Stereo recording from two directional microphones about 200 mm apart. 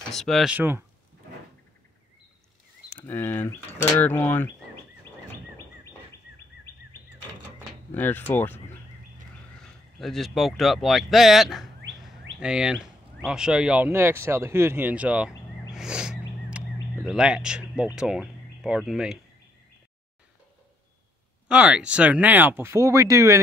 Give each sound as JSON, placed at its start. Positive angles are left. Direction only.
{"t": 0.1, "sound": "speech", "side_deg": 0}
{"t": 3.0, "sound": "speech", "side_deg": 10}
{"t": 7.9, "sound": "speech", "side_deg": 10}
{"t": 9.6, "sound": "speech", "side_deg": 0}
{"t": 15.7, "sound": "a sound", "side_deg": -5}
{"t": 16.7, "sound": "a sound", "side_deg": 15}
{"t": 17.1, "sound": "speech", "side_deg": -5}
{"t": 21.5, "sound": "speech", "side_deg": -5}